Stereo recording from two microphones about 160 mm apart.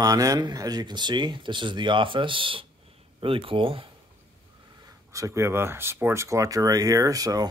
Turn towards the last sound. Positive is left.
turn(degrees=-20)  # may be behind; listen again after turning